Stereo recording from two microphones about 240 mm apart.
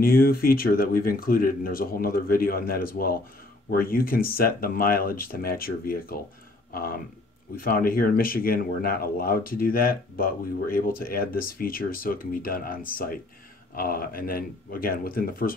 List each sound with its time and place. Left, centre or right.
0.0 s speech: left